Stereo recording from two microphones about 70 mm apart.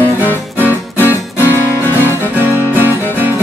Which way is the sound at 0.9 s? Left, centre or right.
Left.